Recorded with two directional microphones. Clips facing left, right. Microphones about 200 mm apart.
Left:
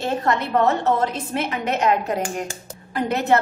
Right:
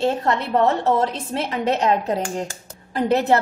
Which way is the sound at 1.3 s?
30° right (ahead or behind).